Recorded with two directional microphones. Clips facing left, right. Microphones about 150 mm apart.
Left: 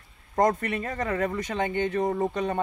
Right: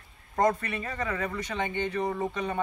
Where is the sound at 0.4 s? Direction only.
45° left (ahead or behind).